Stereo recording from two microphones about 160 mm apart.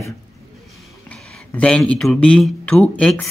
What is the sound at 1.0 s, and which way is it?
Speech, 10° left (ahead or behind).